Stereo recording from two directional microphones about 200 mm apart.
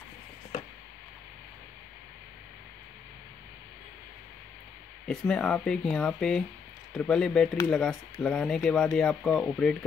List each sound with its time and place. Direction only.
5.0 s speech: 5° left (ahead or behind)